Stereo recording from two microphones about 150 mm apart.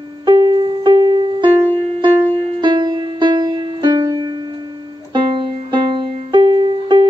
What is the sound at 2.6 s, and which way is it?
Music, 30° right (ahead or behind).